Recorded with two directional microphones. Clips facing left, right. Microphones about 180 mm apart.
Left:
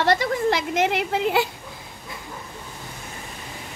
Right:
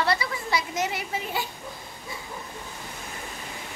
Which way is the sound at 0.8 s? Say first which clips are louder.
Left 9 dB; 75° left (ahead or behind).